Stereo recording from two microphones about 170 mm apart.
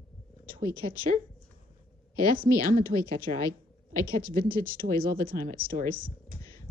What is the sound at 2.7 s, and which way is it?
Speech, 55° right (ahead or behind).